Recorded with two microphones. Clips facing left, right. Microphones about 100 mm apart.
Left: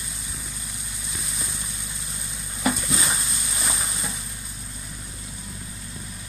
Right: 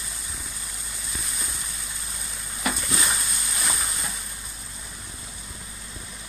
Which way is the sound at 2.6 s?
20° left (ahead or behind).